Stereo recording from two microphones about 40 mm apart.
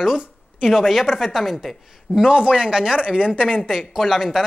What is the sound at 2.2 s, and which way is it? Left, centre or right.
Speech, right.